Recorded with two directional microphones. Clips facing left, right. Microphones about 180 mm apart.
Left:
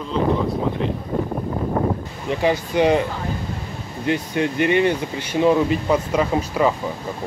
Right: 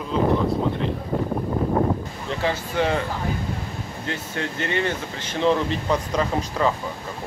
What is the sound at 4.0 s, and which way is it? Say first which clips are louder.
Speech: left 9 dB; 15° left (ahead or behind).